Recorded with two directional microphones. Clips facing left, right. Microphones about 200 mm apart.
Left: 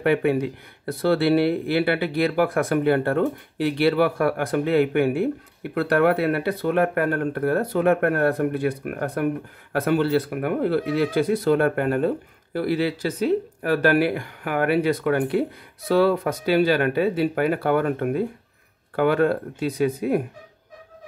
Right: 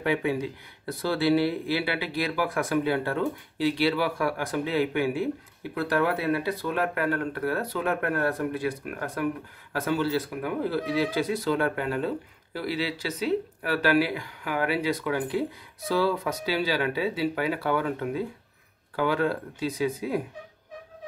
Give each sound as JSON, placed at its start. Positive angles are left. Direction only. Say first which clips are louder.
{"t": 0.0, "sound": "speech", "louder": "left 6 dB", "side_deg": 60}